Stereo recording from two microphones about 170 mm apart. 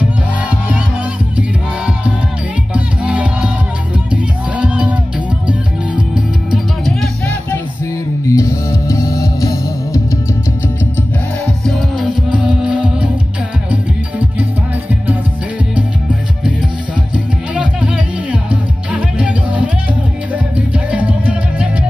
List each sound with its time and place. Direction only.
2.7 s music: 5° right (ahead or behind)
8.3 s music: 15° left (ahead or behind)
11.6 s music: 5° right (ahead or behind)
17.6 s music: 10° right (ahead or behind)